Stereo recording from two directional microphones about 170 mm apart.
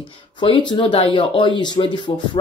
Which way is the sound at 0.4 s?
30° left (ahead or behind).